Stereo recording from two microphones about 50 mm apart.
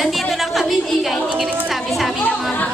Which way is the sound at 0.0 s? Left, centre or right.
Centre.